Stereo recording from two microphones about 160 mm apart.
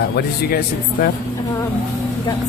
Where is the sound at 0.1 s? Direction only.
75° left (ahead or behind).